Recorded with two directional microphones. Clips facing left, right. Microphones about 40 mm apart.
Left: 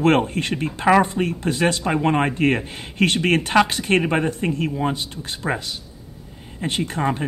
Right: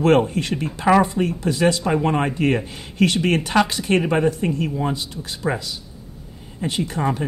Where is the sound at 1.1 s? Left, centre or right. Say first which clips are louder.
Right 1 dB; left.